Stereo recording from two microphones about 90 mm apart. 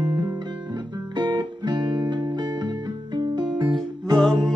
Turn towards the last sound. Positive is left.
turn(degrees=5)  # may be behind; listen again after turning